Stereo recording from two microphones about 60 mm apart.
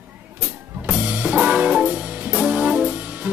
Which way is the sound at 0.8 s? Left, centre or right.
Right.